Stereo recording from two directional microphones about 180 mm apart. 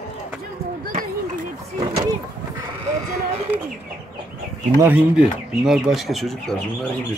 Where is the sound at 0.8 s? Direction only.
45° right (ahead or behind).